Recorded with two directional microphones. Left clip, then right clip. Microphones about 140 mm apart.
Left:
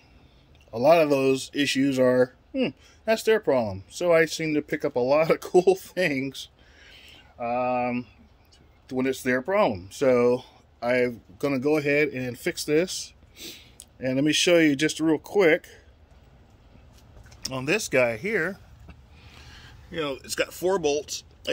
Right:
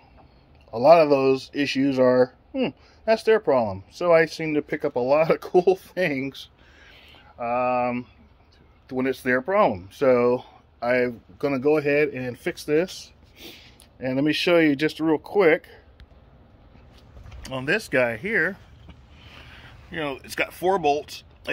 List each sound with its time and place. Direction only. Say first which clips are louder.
0.7 s speech: right 4 dB; 30° left (ahead or behind)
17.4 s speech: right 1 dB; 45° left (ahead or behind); by 21.5 s 5° left (ahead or behind)